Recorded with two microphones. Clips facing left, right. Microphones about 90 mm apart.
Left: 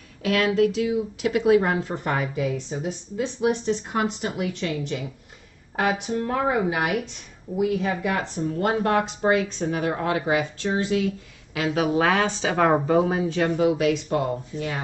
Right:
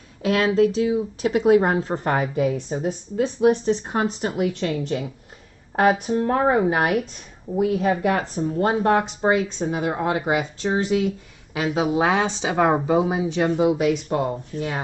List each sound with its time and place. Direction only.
0.2 s speech: 30° right (ahead or behind)
8.5 s speech: 25° right (ahead or behind)
14.5 s speech: 60° right (ahead or behind)